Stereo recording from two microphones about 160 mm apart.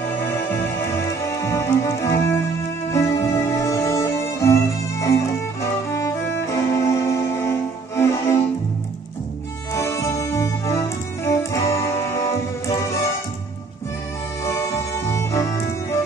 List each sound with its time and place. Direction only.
0.2 s music: 15° left (ahead or behind)
9.8 s music: 15° left (ahead or behind)
14.4 s music: 15° left (ahead or behind)